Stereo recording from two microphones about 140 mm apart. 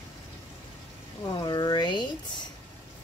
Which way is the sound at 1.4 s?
30° left (ahead or behind).